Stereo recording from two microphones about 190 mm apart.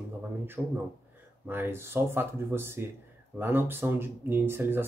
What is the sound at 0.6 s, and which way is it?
Speech, centre (ahead or behind).